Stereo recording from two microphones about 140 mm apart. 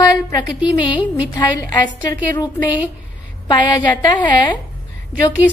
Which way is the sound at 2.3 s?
30° left (ahead or behind).